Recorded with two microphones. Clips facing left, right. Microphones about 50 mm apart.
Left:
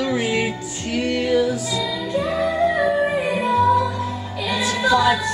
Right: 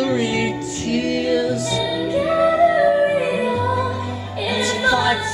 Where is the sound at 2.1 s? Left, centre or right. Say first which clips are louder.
Right 5 dB; centre.